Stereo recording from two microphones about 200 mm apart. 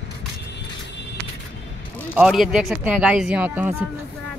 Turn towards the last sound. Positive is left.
turn(degrees=-10)  # may be behind; listen again after turning